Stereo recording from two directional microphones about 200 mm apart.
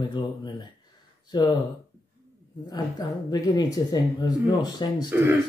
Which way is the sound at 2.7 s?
20° left (ahead or behind).